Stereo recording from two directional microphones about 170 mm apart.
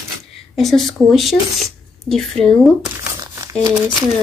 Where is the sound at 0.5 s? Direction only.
Centre (ahead or behind).